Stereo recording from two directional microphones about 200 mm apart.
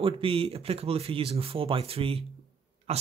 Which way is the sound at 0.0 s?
30° right (ahead or behind).